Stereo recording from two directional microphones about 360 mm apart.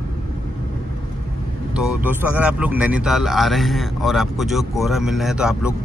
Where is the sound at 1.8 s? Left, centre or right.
Centre.